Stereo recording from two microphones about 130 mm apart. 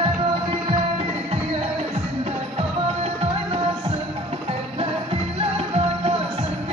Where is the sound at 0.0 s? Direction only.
45° right (ahead or behind).